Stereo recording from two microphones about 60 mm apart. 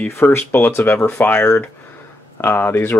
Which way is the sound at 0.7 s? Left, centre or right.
Left.